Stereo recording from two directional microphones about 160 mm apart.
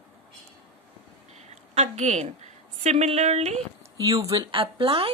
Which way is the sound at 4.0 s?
20° right (ahead or behind).